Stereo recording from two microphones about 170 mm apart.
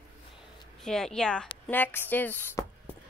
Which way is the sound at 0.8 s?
5° left (ahead or behind).